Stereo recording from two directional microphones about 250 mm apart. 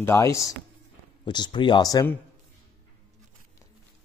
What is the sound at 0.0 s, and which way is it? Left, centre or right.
Speech, centre.